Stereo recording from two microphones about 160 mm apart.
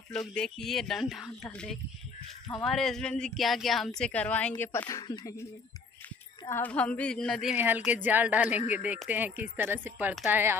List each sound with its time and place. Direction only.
0.1 s a woman's voice: 5° left (ahead or behind)
4.8 s speech: 25° left (ahead or behind)
6.4 s a woman's voice: 15° left (ahead or behind)
7.5 s speech: 10° right (ahead or behind)